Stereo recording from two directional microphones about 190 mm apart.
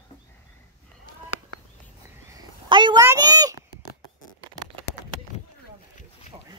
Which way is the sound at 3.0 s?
20° right (ahead or behind).